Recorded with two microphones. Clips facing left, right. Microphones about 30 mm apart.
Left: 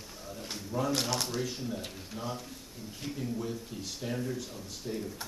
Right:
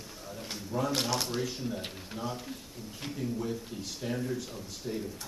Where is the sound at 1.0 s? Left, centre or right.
Centre.